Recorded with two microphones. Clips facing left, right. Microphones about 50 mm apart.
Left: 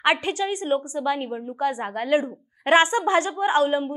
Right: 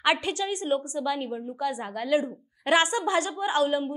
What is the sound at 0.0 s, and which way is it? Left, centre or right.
A woman's voice, left.